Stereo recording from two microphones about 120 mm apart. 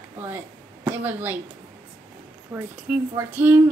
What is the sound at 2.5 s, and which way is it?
A woman's voice, 15° right (ahead or behind).